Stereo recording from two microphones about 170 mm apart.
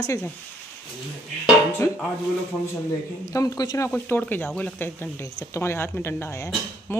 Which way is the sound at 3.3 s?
20° left (ahead or behind).